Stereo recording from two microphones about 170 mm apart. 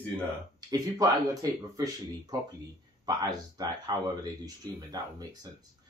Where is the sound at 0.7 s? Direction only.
20° right (ahead or behind).